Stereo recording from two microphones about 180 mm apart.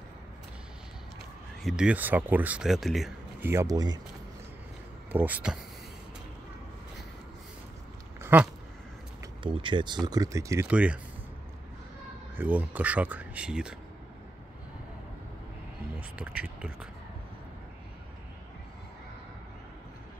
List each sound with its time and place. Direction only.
1.6 s speech: 5° right (ahead or behind)
3.4 s speech: 15° right (ahead or behind)
5.1 s speech: 10° right (ahead or behind)
8.2 s a sound: 10° right (ahead or behind)
9.4 s speech: 30° right (ahead or behind); by 11.0 s 5° right (ahead or behind)
12.4 s speech: 10° right (ahead or behind)
16.0 s speech: 5° right (ahead or behind)